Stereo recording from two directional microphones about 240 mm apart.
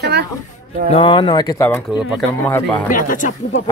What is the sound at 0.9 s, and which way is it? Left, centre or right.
Speech, left.